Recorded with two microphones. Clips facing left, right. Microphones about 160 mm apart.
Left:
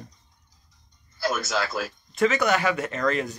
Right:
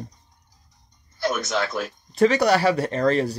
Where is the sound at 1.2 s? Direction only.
5° left (ahead or behind).